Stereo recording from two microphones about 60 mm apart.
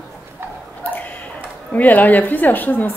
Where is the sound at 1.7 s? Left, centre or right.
Left.